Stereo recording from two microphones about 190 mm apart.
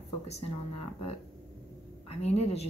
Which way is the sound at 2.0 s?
35° left (ahead or behind).